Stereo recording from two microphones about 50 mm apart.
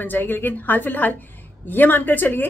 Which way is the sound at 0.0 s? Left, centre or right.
Left.